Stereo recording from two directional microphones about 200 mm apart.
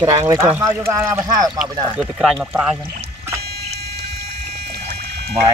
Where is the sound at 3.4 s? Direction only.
50° right (ahead or behind).